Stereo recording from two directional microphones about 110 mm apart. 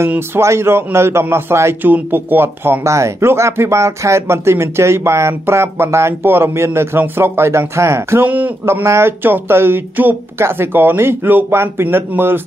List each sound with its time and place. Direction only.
0.0 s a man's voice: 25° right (ahead or behind)